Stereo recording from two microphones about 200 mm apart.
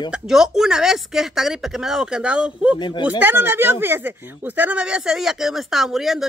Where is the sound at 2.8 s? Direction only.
25° left (ahead or behind).